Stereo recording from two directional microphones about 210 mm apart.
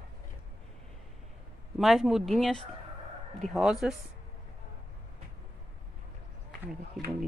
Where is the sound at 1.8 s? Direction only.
Centre (ahead or behind).